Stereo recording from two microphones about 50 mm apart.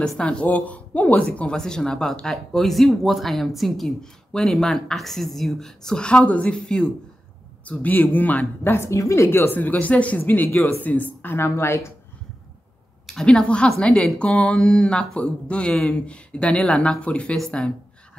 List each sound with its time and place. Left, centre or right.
0.2 s speech: left; by 5.7 s centre
5.9 s a woman's voice: centre
7.6 s speech: left
8.6 s a woman's voice: left
8.9 s speech: left
9.3 s a woman's voice: left
9.6 s speech: left
11.3 s a woman's voice: left
13.1 s speech: centre